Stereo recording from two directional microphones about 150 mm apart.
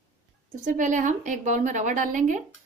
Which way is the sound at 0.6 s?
60° right (ahead or behind).